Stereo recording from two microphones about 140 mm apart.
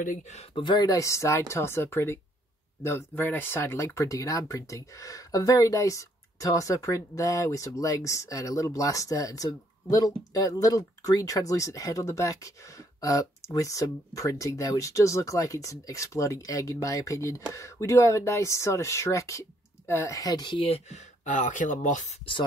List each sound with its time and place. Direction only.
0.0 s speech: 75° left (ahead or behind)
0.4 s speech: 35° left (ahead or behind); by 22.1 s 60° left (ahead or behind)